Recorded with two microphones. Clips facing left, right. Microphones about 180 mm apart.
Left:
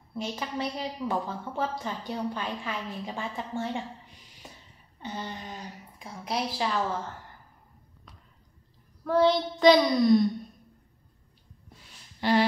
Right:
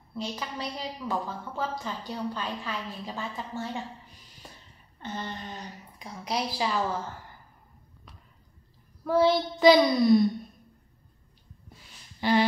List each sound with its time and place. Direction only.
0.1 s a woman's voice: 20° left (ahead or behind)
4.9 s a woman's voice: 10° left (ahead or behind)
9.0 s a woman's voice: 5° right (ahead or behind)
11.7 s a sound: centre (ahead or behind)